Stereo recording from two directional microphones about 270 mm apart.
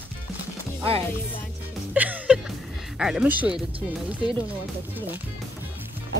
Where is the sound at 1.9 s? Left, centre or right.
Centre.